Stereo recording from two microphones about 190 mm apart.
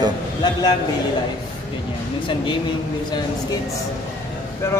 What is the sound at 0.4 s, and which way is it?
Speech, 20° left (ahead or behind).